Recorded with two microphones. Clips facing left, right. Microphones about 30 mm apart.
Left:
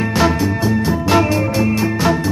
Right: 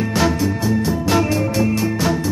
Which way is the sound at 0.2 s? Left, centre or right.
Centre.